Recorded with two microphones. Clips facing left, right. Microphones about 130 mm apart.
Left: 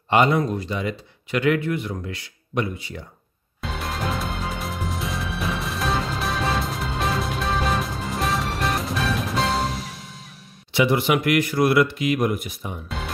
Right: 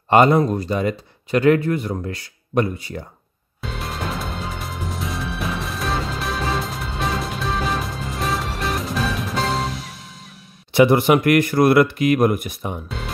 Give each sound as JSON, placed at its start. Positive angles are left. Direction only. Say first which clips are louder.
{"t": 0.1, "sound": "speech", "louder": "right 5 dB", "side_deg": -40}
{"t": 3.6, "sound": "music", "louder": "even", "side_deg": 0}
{"t": 10.7, "sound": "speech", "louder": "right 6 dB", "side_deg": -50}
{"t": 12.8, "sound": "music", "louder": "right 1 dB", "side_deg": 0}